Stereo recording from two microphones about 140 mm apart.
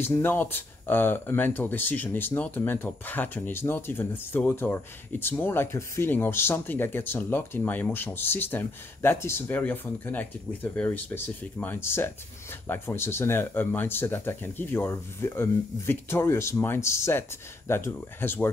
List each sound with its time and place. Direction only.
0.0 s speech: 15° left (ahead or behind)